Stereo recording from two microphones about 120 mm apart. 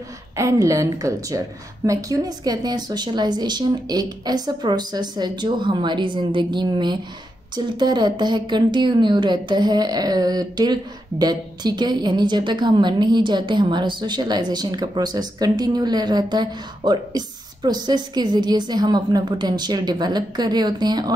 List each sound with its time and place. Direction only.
0.4 s a woman's voice: 25° right (ahead or behind)